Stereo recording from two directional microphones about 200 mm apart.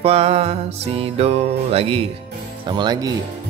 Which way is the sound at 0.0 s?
30° right (ahead or behind).